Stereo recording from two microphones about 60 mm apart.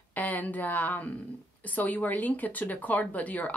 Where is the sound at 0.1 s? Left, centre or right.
Left.